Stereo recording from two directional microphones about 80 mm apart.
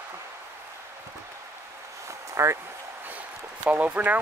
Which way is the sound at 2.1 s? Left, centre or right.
Right.